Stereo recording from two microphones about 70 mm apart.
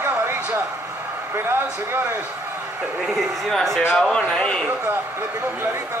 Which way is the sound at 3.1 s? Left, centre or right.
Centre.